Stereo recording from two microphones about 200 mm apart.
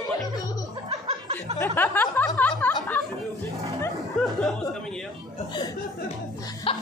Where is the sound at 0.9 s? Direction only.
25° right (ahead or behind).